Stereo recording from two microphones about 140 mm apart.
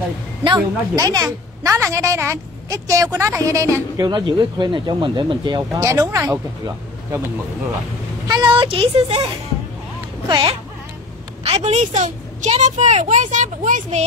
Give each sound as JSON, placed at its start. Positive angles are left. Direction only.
{"t": 0.6, "sound": "a woman's voice", "side_deg": -25}
{"t": 5.8, "sound": "a woman's voice", "side_deg": -20}
{"t": 8.3, "sound": "speech", "side_deg": -30}
{"t": 10.2, "sound": "speech", "side_deg": -35}
{"t": 11.4, "sound": "a child's voice", "side_deg": -50}